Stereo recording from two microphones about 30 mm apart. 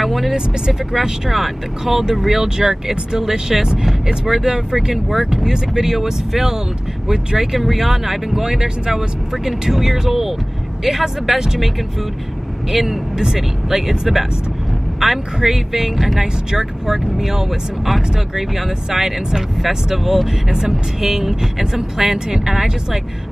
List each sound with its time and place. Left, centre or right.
0.0 s speech: centre
0.9 s speech: centre
12.7 s speech: centre
20.0 s speech: centre